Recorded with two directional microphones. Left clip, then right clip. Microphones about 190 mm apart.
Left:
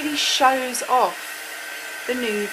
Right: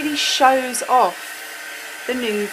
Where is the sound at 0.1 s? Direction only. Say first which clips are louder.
Right 3 dB; 15° right (ahead or behind).